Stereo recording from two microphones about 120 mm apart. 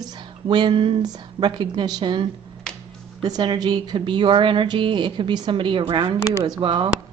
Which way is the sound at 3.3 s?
35° right (ahead or behind).